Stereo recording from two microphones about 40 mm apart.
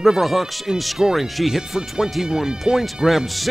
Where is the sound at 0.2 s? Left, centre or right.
Centre.